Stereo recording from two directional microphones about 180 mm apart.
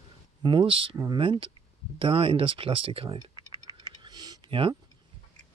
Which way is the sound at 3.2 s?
25° left (ahead or behind).